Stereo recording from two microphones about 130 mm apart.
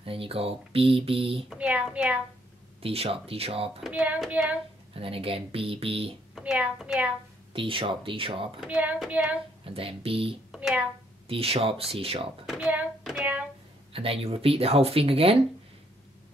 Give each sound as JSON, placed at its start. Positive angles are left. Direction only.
{"t": 0.0, "sound": "speech", "side_deg": -45}
{"t": 1.5, "sound": "hands", "side_deg": -10}
{"t": 2.8, "sound": "speech", "side_deg": -45}
{"t": 3.8, "sound": "hands", "side_deg": -10}
{"t": 4.9, "sound": "speech", "side_deg": -45}
{"t": 6.3, "sound": "a child's voice", "side_deg": -5}
{"t": 7.5, "sound": "speech", "side_deg": -45}
{"t": 8.5, "sound": "hands", "side_deg": -10}
{"t": 9.7, "sound": "speech", "side_deg": -45}
{"t": 10.5, "sound": "speech", "side_deg": -5}
{"t": 11.2, "sound": "speech", "side_deg": -50}
{"t": 12.5, "sound": "hands", "side_deg": -10}
{"t": 13.9, "sound": "speech", "side_deg": -45}